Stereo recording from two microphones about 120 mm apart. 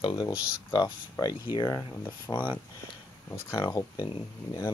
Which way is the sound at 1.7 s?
20° left (ahead or behind).